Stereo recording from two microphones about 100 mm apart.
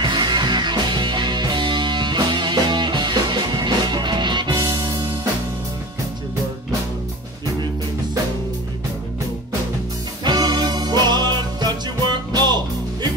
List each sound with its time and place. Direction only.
0.0 s music: 50° right (ahead or behind)
10.2 s music: 45° right (ahead or behind)